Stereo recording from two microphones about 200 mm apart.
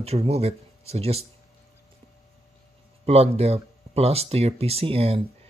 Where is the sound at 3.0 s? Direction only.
30° right (ahead or behind).